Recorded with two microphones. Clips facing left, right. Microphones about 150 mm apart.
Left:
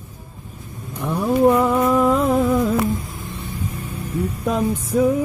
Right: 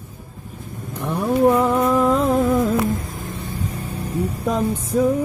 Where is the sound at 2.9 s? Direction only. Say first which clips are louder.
Right 1 dB; 45° right (ahead or behind).